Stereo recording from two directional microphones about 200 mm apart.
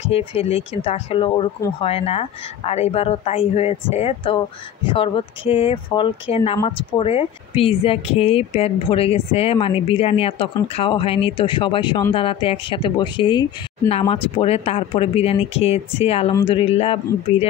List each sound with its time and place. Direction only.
0.0 s speech: 30° left (ahead or behind)